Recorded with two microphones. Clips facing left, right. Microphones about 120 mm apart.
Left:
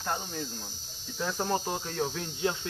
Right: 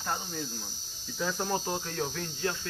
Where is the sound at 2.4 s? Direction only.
20° left (ahead or behind).